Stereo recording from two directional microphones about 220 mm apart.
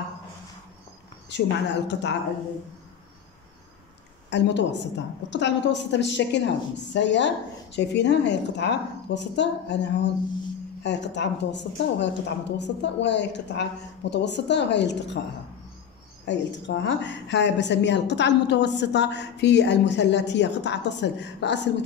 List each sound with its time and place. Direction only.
1.3 s a woman's voice: 50° left (ahead or behind)
4.3 s a woman's voice: 50° left (ahead or behind)
16.3 s a woman's voice: 55° left (ahead or behind)